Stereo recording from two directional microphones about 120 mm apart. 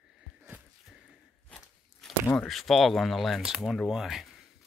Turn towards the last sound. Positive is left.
turn(degrees=0)  # may be behind; listen again after turning